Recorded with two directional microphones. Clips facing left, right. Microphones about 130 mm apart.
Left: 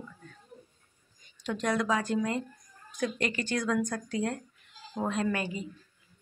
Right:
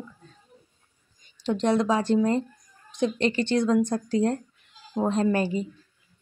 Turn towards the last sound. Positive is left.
turn(degrees=-30)  # may be behind; listen again after turning